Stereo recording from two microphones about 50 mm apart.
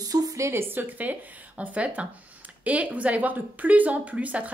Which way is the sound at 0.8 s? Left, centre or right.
Right.